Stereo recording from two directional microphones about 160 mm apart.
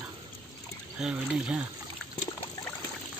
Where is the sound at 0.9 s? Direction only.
5° right (ahead or behind).